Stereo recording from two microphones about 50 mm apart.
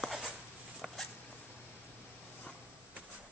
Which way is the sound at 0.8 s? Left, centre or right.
Centre.